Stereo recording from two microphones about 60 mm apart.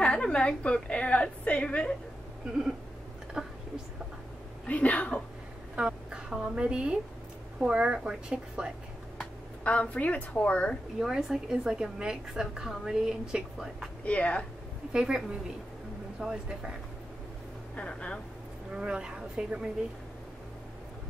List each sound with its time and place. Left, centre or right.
0.0 s a woman's voice: centre
3.4 s a sound: centre
4.6 s a woman's voice: left
5.8 s a woman's voice: centre
9.7 s a woman's voice: left
11.0 s a woman's voice: centre
14.0 s a woman's voice: left
14.9 s a woman's voice: centre
17.7 s speech: centre
18.8 s a woman's voice: centre